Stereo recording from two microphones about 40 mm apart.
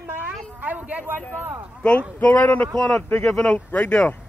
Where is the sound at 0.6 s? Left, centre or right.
Right.